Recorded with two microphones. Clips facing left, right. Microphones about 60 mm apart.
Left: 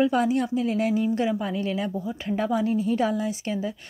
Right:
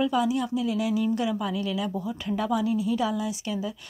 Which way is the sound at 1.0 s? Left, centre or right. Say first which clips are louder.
Left 2 dB; left.